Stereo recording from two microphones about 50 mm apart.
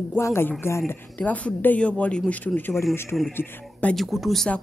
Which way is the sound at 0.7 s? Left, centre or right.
Left.